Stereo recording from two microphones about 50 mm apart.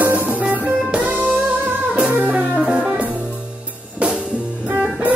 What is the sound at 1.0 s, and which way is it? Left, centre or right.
Music, right.